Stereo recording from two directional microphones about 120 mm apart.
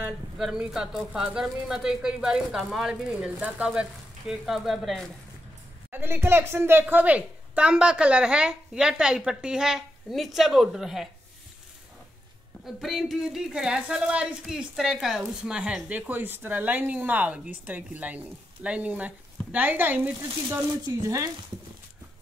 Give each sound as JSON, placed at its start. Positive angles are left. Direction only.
{"t": 0.4, "sound": "speech", "side_deg": -5}
{"t": 5.9, "sound": "speech", "side_deg": -20}
{"t": 12.6, "sound": "speech", "side_deg": 0}